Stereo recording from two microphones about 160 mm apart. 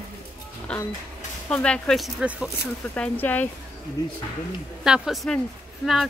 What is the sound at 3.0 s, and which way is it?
Speech, 10° left (ahead or behind).